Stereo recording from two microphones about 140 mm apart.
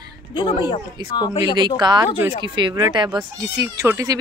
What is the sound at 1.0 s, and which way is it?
Speech, 30° right (ahead or behind).